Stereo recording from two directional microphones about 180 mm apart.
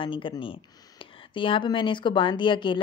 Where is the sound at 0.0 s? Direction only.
30° left (ahead or behind).